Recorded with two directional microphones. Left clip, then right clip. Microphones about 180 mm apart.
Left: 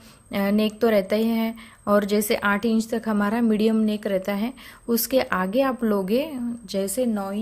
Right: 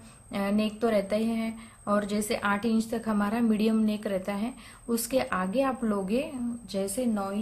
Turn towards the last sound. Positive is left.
turn(degrees=45)  # may be behind; listen again after turning